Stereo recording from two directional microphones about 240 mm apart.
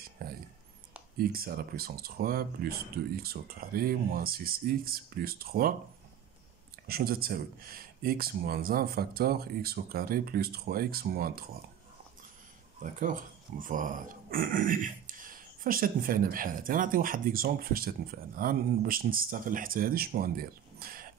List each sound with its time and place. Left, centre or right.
0.2 s a sound: right
1.1 s speech: right
6.9 s speech: right
12.8 s speech: right